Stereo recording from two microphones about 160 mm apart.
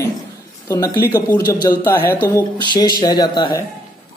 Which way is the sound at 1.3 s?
25° left (ahead or behind).